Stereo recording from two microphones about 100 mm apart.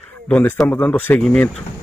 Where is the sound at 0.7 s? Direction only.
20° left (ahead or behind).